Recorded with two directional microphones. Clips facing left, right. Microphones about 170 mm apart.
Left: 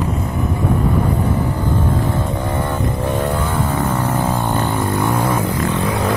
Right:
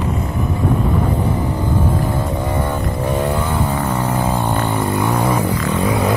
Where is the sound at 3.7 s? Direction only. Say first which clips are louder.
Even; 15° right (ahead or behind).